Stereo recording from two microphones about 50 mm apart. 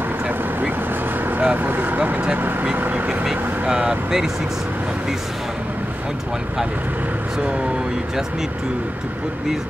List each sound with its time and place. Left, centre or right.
1.4 s speech: right
1.7 s speech: right
3.1 s speech: centre